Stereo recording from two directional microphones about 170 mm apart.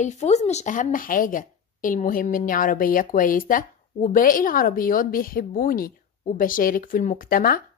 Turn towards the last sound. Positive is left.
turn(degrees=55)  # may be behind; listen again after turning